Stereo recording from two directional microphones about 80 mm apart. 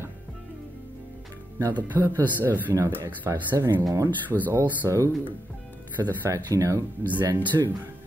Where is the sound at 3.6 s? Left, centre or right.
Right.